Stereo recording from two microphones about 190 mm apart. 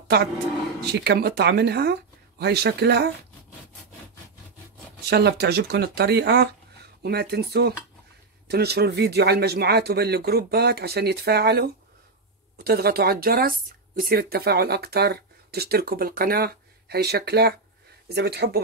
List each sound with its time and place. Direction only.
0.8 s speech: 60° right (ahead or behind)
5.0 s speech: 60° right (ahead or behind)
12.6 s speech: 55° right (ahead or behind)